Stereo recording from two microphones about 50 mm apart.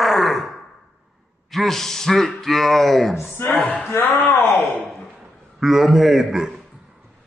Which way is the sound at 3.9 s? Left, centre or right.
Left.